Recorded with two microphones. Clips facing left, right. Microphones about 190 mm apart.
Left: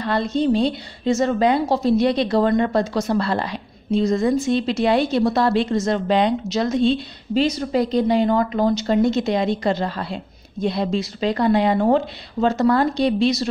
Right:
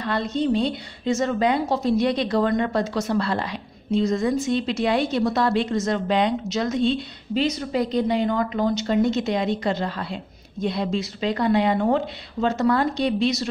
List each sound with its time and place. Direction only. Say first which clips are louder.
0.0 s a woman's voice: left 3 dB; 35° left (ahead or behind)